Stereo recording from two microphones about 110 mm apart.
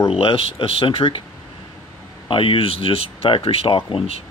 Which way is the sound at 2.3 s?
50° left (ahead or behind).